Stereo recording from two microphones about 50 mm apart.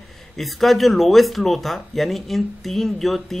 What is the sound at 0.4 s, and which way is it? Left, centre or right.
Speech, centre.